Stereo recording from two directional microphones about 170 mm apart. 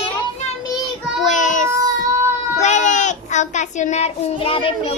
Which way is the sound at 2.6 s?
45° left (ahead or behind).